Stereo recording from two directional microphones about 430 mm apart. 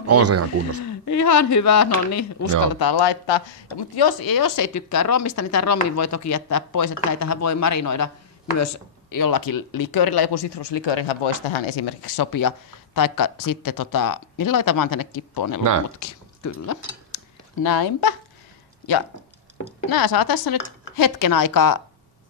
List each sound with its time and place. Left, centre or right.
0.0 s speech: right
0.8 s speech: left
2.7 s speech: left
16.0 s cutlery: left
19.9 s speech: left